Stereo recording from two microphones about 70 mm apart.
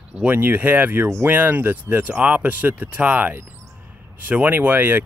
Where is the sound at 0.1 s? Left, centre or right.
Right.